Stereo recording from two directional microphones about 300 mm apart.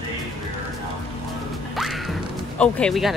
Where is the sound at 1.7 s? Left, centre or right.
Centre.